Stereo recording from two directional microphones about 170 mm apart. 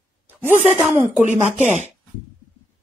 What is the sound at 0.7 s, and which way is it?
Speech, 10° right (ahead or behind).